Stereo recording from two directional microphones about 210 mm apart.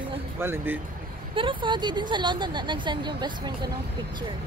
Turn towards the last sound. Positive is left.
turn(degrees=-20)  # may be behind; listen again after turning